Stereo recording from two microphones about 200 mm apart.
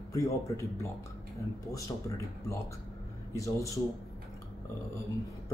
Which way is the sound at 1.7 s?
15° left (ahead or behind).